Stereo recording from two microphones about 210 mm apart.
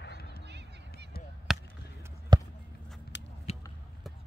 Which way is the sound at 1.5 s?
Centre (ahead or behind).